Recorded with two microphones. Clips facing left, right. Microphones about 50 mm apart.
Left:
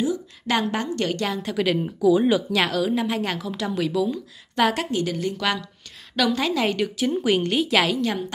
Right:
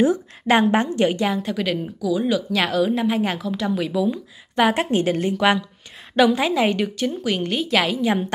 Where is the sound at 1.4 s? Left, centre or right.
Centre.